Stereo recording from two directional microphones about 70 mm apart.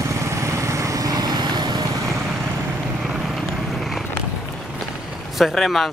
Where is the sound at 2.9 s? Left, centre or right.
Centre.